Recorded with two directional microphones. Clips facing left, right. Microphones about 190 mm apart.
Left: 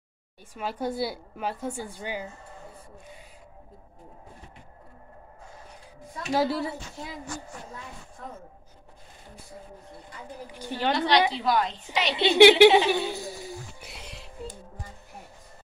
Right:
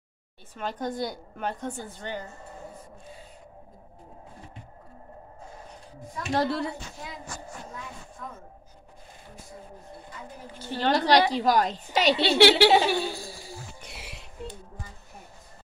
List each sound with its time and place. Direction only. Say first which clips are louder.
0.6 s a woman's voice: left 1 dB; 10° left (ahead or behind)
6.3 s a woman's voice: left 1 dB; 5° left (ahead or behind)
10.5 s a woman's voice: even; 15° left (ahead or behind)
11.0 s a woman's voice: right 2 dB; 40° right (ahead or behind)
12.2 s a woman's voice: left 6 dB; 15° left (ahead or behind)
12.9 s a sound: left 1 dB; 20° left (ahead or behind)
13.9 s music: left 2 dB; 5° right (ahead or behind)